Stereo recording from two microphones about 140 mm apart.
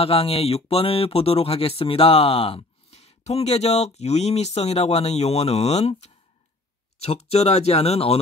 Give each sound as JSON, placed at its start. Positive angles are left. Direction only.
{"t": 0.0, "sound": "speech", "side_deg": 45}